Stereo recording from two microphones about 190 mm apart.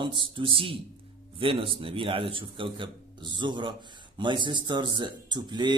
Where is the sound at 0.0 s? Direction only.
25° right (ahead or behind).